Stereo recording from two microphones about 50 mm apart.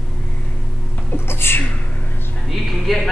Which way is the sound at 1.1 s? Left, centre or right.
Left.